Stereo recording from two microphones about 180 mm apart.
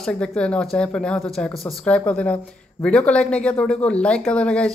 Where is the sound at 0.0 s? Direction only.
5° left (ahead or behind).